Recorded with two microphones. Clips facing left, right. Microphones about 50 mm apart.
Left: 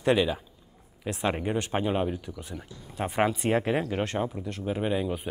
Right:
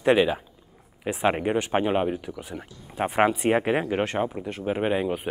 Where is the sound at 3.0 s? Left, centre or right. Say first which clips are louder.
Right 4 dB; right.